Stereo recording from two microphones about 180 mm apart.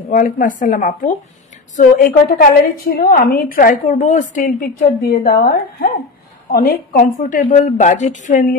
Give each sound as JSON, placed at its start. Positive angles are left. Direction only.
{"t": 0.1, "sound": "a woman's voice", "side_deg": 45}